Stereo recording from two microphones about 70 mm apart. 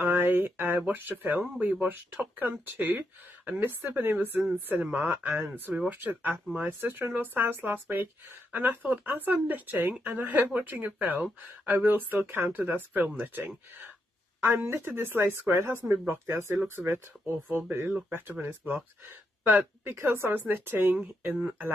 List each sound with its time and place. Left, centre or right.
0.0 s speech: right
14.4 s a woman's voice: right
16.7 s a woman's voice: right
19.5 s a woman's voice: right